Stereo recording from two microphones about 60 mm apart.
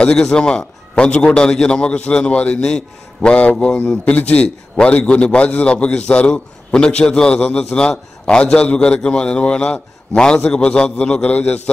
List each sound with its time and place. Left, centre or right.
0.0 s a man's voice: centre